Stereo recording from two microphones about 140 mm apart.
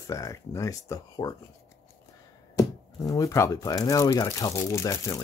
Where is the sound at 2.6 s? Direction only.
25° left (ahead or behind).